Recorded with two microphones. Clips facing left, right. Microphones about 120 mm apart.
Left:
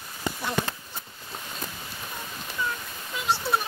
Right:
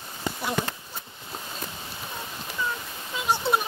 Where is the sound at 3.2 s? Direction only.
20° right (ahead or behind).